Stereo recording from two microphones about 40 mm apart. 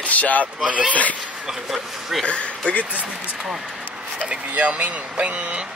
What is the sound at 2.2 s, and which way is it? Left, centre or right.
Speech, left.